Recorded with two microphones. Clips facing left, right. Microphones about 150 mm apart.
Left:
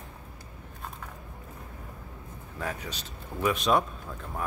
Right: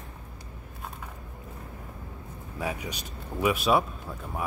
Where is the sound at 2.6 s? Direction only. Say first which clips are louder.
Right 2 dB; 10° right (ahead or behind).